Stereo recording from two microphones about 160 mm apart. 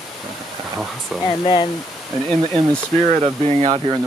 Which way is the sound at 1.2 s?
30° left (ahead or behind).